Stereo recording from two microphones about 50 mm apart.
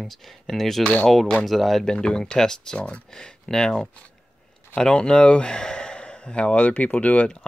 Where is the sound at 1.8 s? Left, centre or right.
Centre.